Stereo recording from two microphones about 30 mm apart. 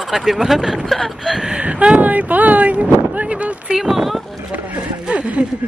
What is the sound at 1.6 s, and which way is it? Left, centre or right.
Speech, right.